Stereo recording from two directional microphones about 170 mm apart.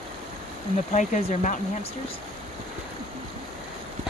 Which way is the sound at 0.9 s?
45° left (ahead or behind).